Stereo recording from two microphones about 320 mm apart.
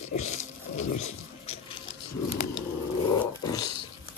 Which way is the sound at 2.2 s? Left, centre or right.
Left.